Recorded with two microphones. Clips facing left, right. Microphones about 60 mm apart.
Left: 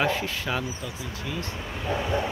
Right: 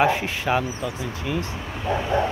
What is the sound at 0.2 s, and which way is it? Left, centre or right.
Speech, right.